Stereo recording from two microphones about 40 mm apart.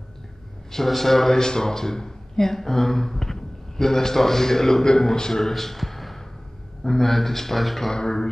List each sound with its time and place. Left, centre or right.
0.7 s a man's voice: centre
5.4 s a sound: centre
6.8 s a man's voice: centre
7.9 s a man's voice: centre